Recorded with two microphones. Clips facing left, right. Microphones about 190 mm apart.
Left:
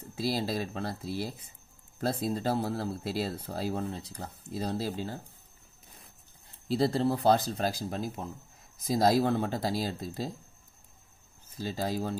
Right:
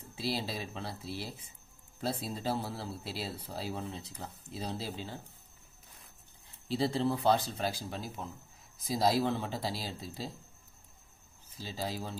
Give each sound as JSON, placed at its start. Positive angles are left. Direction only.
{"t": 0.1, "sound": "speech", "side_deg": 40}
{"t": 6.7, "sound": "speech", "side_deg": 40}
{"t": 11.5, "sound": "speech", "side_deg": 45}